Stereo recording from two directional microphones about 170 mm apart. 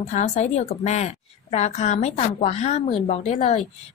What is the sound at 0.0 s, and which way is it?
A woman's voice, 45° left (ahead or behind).